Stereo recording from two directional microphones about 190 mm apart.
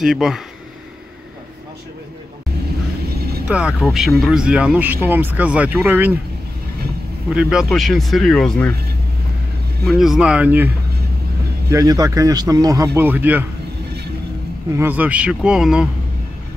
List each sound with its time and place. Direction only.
0.0 s speech: centre (ahead or behind)
3.4 s speech: 5° right (ahead or behind)
7.2 s speech: 5° right (ahead or behind)
9.8 s speech: centre (ahead or behind)
11.7 s speech: 20° right (ahead or behind)
14.8 s speech: 10° right (ahead or behind)